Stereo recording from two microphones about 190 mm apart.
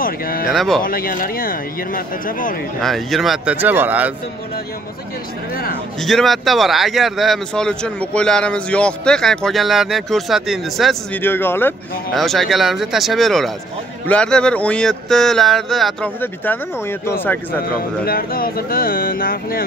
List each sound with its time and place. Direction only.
0.0 s speech: 50° left (ahead or behind)
0.5 s speech: centre (ahead or behind)
0.8 s speech: 50° left (ahead or behind)
2.8 s speech: centre (ahead or behind)
5.5 s speech: 50° left (ahead or behind)
5.9 s speech: centre (ahead or behind)
11.1 s speech: 10° left (ahead or behind)
12.1 s speech: centre (ahead or behind)
17.7 s speech: 50° left (ahead or behind)